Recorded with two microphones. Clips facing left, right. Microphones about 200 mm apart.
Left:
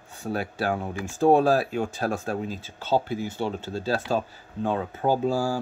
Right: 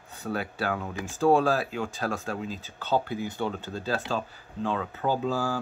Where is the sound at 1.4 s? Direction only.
40° left (ahead or behind).